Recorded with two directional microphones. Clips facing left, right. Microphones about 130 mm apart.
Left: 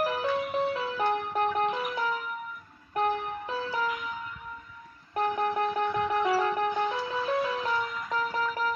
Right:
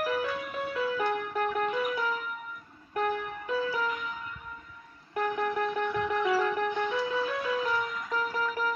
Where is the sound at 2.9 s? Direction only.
30° left (ahead or behind).